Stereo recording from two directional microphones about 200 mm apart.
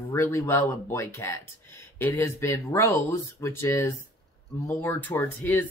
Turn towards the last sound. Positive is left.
turn(degrees=10)  # may be behind; listen again after turning